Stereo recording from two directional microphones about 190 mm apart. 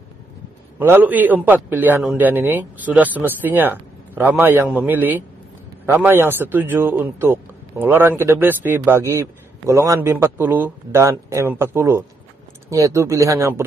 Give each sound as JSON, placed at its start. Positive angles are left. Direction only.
{"t": 0.7, "sound": "a man's voice", "side_deg": -10}